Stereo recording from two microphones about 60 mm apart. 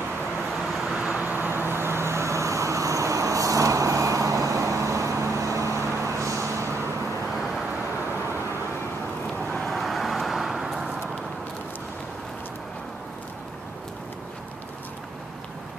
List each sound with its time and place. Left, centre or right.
1.1 s vehicle: right
1.5 s vehicle: right
9.7 s vehicle: centre